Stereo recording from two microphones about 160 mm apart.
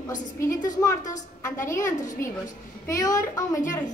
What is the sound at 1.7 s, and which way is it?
A child's voice, 15° left (ahead or behind).